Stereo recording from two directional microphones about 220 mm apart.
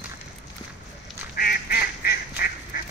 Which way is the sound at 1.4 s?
45° left (ahead or behind).